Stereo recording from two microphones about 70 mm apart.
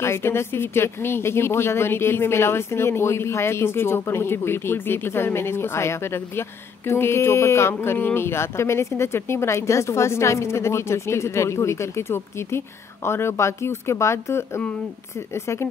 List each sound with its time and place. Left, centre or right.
0.0 s speech: left